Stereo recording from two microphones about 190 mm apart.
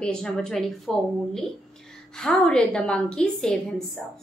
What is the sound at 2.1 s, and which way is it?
A woman's voice, 5° left (ahead or behind).